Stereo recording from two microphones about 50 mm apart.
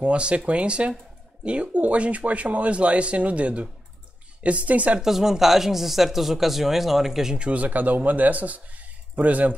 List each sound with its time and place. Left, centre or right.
0.0 s speech: right
5.0 s speech: centre
7.3 s speech: right